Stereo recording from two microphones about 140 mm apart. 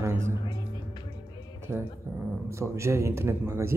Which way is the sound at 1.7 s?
15° right (ahead or behind).